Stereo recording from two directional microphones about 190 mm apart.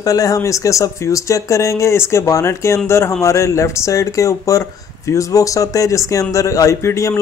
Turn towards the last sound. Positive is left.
turn(degrees=15)  # may be behind; listen again after turning